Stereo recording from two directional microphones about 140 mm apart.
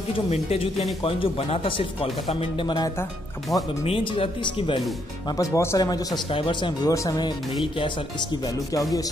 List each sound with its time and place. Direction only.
0.3 s speech: 45° left (ahead or behind)
3.5 s speech: centre (ahead or behind)
3.8 s speech: 40° left (ahead or behind)
5.4 s speech: 20° left (ahead or behind)